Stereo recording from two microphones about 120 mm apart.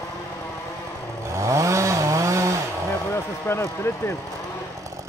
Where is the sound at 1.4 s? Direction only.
25° right (ahead or behind).